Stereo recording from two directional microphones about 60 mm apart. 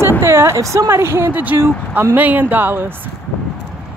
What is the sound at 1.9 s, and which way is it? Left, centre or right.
Speech, right.